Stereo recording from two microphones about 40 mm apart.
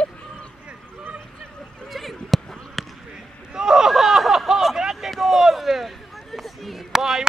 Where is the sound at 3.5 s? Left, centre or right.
Centre.